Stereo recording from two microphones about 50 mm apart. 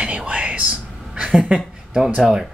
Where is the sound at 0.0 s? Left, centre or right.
Right.